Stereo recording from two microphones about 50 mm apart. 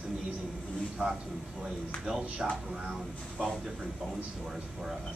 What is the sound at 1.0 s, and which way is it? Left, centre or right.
Speech, right.